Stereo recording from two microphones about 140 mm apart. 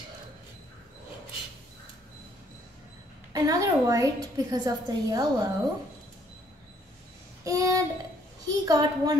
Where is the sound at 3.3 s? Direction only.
25° right (ahead or behind).